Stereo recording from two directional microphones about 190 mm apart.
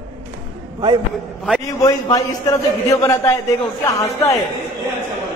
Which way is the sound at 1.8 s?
15° left (ahead or behind).